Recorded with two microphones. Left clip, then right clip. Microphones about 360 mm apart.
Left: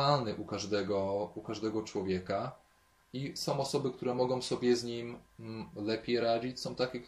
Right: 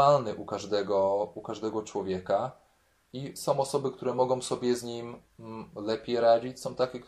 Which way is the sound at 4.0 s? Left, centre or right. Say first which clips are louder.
Right 6 dB; right.